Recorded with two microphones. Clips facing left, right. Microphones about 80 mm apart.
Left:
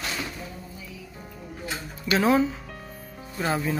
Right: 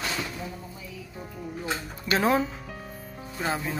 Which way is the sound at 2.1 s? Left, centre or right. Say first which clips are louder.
Left 2 dB; right.